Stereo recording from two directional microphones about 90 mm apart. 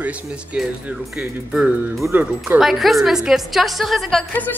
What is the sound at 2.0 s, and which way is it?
Speech, 25° right (ahead or behind).